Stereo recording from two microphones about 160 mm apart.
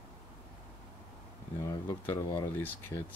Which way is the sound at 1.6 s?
20° left (ahead or behind).